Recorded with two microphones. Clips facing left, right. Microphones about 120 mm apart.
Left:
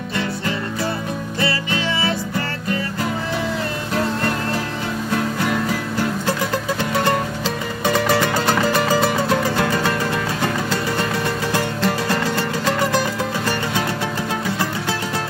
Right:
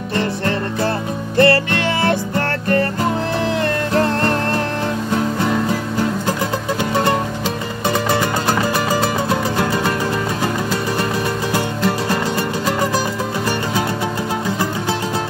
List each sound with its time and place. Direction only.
1.4 s music: 55° right (ahead or behind)
7.8 s music: 20° right (ahead or behind)
11.5 s music: 15° right (ahead or behind)